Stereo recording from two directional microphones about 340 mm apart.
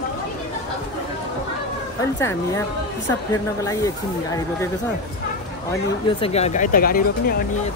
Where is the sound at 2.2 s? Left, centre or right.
Centre.